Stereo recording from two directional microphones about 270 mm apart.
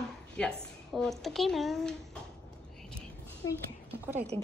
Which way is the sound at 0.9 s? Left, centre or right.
Centre.